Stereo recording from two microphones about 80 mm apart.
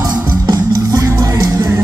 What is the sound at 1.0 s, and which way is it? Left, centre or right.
Music, right.